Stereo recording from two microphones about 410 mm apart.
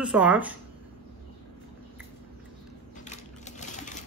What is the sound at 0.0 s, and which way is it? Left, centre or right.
Speech, centre.